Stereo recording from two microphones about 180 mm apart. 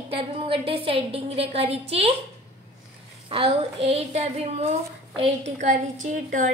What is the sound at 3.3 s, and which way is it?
A woman's voice, 30° right (ahead or behind).